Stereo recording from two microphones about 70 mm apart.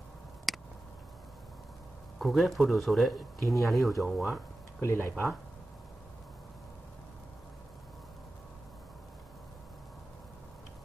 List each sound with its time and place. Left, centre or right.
0.5 s tick: centre
2.1 s speech: centre
4.7 s speech: left